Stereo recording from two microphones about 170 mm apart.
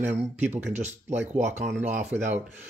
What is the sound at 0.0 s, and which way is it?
Speech, 10° right (ahead or behind).